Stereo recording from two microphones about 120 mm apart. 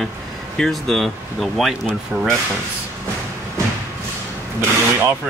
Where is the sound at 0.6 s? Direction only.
5° left (ahead or behind).